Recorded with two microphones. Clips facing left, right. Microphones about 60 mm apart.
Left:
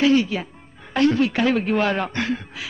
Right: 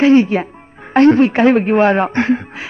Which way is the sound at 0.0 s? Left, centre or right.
Right.